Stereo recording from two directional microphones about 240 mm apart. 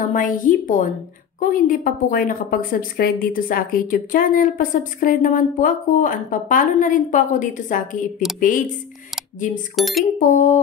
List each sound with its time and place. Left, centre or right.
0.1 s a woman's voice: left
9.8 s speech: centre
10.1 s a woman's voice: left